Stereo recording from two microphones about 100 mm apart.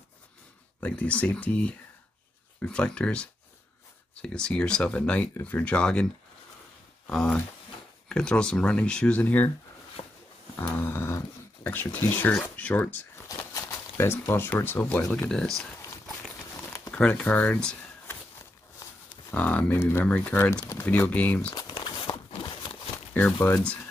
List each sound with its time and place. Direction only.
0.7 s speech: 15° left (ahead or behind)
7.1 s speech: 5° left (ahead or behind)
10.0 s dog: 70° left (ahead or behind)
10.8 s speech: 25° left (ahead or behind)
13.5 s a sound: 30° left (ahead or behind)
14.5 s speech: 20° left (ahead or behind)
15.2 s speech: 5° left (ahead or behind)
16.9 s speech: 10° left (ahead or behind)
19.3 s speech: 15° left (ahead or behind)
21.5 s a sound: 45° left (ahead or behind)
23.4 s speech: 15° left (ahead or behind)